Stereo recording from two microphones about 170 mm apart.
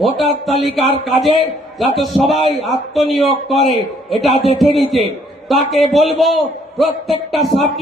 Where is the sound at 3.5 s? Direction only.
30° left (ahead or behind).